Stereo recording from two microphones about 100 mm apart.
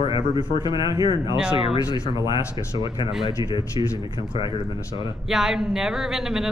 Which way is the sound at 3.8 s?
60° left (ahead or behind).